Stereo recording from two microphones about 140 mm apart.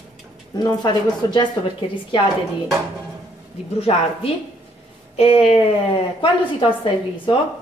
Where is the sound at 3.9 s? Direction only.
45° left (ahead or behind).